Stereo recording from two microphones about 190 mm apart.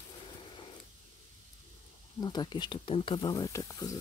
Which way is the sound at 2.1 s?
20° left (ahead or behind).